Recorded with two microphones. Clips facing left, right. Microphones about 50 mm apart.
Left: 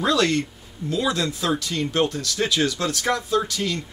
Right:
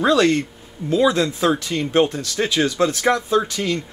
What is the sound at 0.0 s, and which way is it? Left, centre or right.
A man's voice, right.